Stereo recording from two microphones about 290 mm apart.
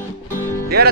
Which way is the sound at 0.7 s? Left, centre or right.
Right.